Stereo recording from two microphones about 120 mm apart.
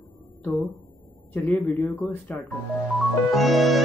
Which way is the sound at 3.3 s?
Centre (ahead or behind).